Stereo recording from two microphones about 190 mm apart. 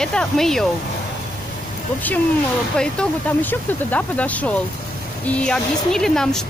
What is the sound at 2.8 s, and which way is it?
Speech, 5° left (ahead or behind).